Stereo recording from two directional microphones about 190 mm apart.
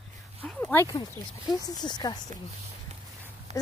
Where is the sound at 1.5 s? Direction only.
20° left (ahead or behind).